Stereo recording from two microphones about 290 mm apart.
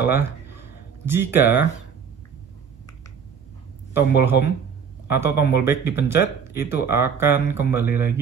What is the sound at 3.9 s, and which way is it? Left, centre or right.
A man's voice, left.